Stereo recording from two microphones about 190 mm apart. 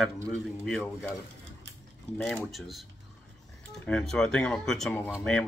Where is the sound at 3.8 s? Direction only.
5° left (ahead or behind).